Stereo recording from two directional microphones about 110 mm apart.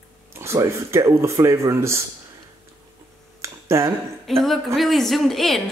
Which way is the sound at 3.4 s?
25° right (ahead or behind).